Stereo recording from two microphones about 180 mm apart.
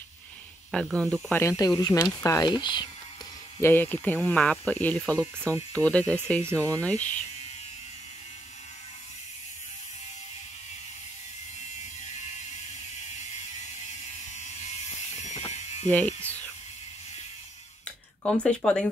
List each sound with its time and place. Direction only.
0.7 s speech: 5° left (ahead or behind); by 2.9 s 25° left (ahead or behind)
3.6 s speech: 10° left (ahead or behind)
5.1 s speech: 15° right (ahead or behind)
5.9 s speech: 5° left (ahead or behind)
6.4 s speech: 15° right (ahead or behind)
6.8 s speech: 10° left (ahead or behind)
14.3 s electric shaver: 40° left (ahead or behind)
18.2 s speech: 5° left (ahead or behind)